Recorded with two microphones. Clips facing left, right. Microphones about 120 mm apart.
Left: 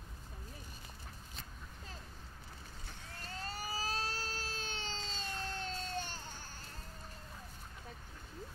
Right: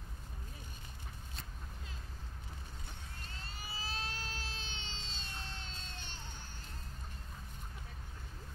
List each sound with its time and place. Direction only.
3.2 s vehicle: 40° left (ahead or behind)